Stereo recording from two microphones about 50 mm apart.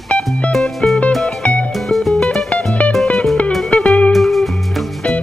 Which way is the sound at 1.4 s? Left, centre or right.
Left.